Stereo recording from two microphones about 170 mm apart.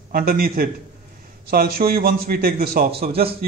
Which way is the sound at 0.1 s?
60° right (ahead or behind).